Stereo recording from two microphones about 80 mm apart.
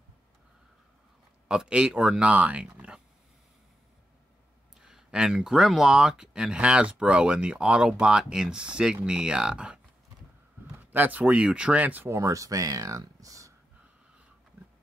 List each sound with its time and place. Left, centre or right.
1.5 s speech: centre
4.7 s speech: centre
10.8 s speech: right
12.1 s speech: right
13.0 s a sound: right